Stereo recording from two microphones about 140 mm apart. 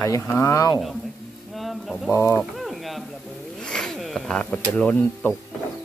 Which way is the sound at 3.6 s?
5° left (ahead or behind).